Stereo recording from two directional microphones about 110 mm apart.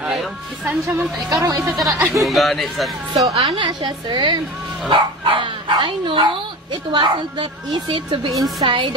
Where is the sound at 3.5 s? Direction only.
45° right (ahead or behind).